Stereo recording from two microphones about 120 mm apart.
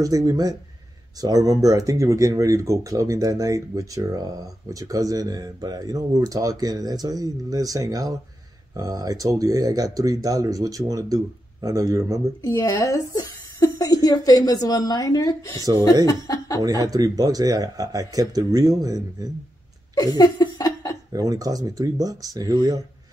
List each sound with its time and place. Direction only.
0.0 s speech: 30° right (ahead or behind)
12.4 s a woman's voice: 30° left (ahead or behind)
16.6 s speech: 30° right (ahead or behind)
20.2 s laughter: 35° left (ahead or behind)
21.1 s speech: 30° right (ahead or behind)